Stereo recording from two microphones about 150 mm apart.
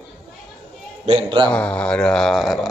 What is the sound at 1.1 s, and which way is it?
Speech, 35° right (ahead or behind).